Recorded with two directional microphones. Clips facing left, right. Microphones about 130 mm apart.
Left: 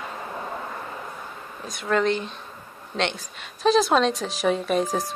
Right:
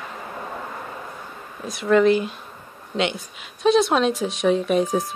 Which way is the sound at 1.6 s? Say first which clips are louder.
Right 6 dB; centre (ahead or behind).